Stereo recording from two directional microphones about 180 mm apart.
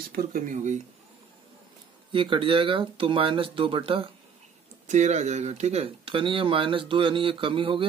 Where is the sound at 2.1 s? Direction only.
30° right (ahead or behind).